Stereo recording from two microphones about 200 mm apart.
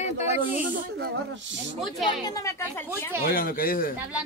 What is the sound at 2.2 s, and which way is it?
Speech, 15° left (ahead or behind).